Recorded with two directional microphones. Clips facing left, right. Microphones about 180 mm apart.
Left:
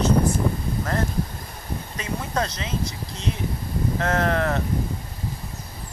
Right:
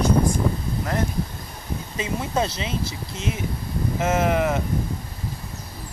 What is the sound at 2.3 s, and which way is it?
Speech, 10° right (ahead or behind).